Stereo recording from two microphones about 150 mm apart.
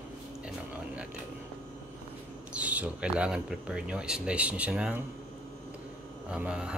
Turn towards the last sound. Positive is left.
turn(degrees=-5)  # may be behind; listen again after turning